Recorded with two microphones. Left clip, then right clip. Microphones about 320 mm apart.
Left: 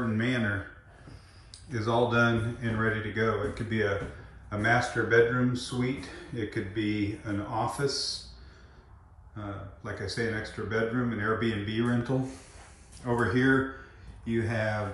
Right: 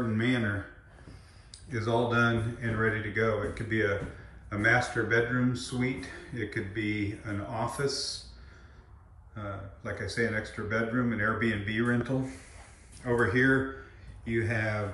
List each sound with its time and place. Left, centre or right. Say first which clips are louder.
0.0 s a sound: even; centre
1.7 s speech: left 2 dB; centre
9.4 s speech: right 1 dB; centre